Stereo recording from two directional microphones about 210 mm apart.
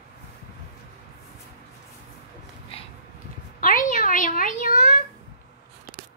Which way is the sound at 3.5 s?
40° left (ahead or behind).